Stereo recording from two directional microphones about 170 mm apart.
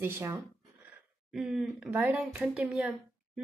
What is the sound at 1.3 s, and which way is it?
Speech, centre (ahead or behind).